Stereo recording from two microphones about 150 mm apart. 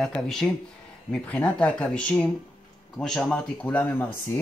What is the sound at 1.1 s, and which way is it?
A man's voice, 10° left (ahead or behind).